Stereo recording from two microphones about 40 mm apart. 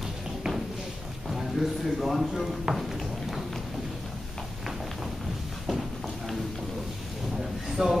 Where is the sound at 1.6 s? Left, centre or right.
Centre.